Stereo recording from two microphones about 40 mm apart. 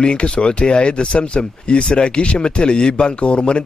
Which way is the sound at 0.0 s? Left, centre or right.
Left.